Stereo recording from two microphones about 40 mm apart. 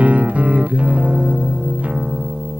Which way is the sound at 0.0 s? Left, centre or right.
Right.